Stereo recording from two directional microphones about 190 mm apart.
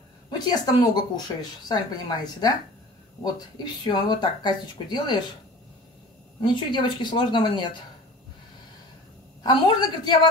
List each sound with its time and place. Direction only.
0.3 s speech: 20° left (ahead or behind)
6.4 s speech: 25° left (ahead or behind)
9.4 s speech: 25° left (ahead or behind)